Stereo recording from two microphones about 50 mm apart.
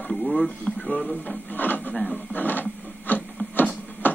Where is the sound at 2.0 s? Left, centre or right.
Left.